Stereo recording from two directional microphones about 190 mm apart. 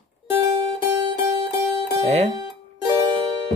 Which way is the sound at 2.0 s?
35° right (ahead or behind).